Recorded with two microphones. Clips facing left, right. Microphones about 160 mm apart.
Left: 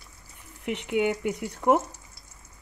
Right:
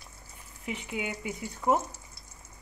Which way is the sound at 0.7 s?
70° left (ahead or behind).